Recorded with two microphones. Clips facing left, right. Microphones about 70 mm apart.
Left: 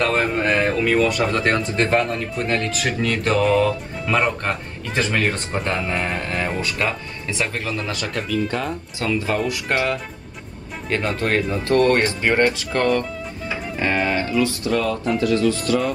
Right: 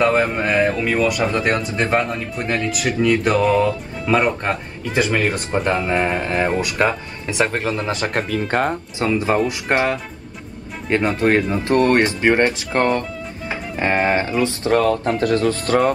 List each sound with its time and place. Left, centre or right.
0.0 s speech: centre
4.1 s speech: centre
5.1 s speech: right
8.1 s speech: right
9.0 s speech: right
11.1 s speech: right
14.7 s speech: right